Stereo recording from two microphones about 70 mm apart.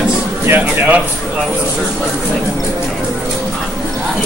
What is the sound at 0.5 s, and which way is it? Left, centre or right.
Speech, right.